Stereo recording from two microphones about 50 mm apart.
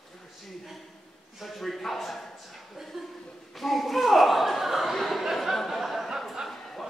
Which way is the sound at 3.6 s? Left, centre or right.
Centre.